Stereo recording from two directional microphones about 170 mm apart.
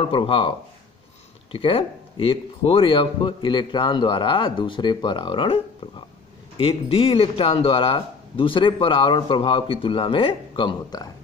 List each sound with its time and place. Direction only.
0.0 s speech: 30° left (ahead or behind)